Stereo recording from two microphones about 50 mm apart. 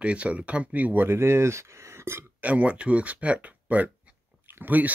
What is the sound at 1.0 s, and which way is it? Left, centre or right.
Speech, right.